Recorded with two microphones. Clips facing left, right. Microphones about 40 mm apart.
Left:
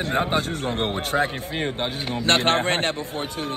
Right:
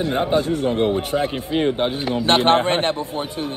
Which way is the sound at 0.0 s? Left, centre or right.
Left.